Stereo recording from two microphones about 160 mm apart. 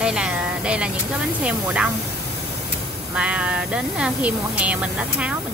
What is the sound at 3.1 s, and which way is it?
Speech, 5° right (ahead or behind).